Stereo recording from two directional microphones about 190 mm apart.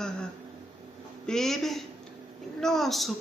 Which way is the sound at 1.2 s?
Centre (ahead or behind).